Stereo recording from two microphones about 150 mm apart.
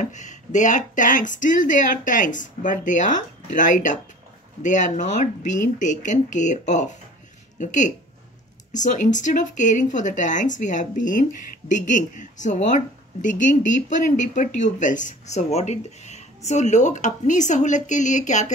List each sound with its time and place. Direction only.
0.0 s speech: 55° left (ahead or behind)